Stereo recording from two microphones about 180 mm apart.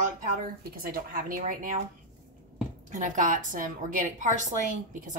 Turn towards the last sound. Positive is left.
turn(degrees=-45)  # may be behind; listen again after turning